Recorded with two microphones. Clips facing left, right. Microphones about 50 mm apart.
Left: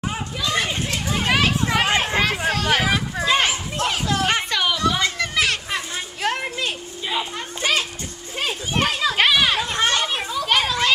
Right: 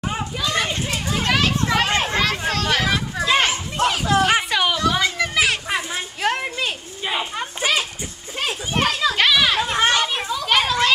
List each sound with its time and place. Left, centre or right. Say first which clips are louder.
0.1 s children playing: right 1 dB; centre
3.3 s children playing: right 1 dB; centre
5.7 s a sound: right 3 dB; centre
7.1 s children playing: right 2 dB; right
8.4 s children playing: right 1 dB; centre
9.6 s children playing: right 3 dB; centre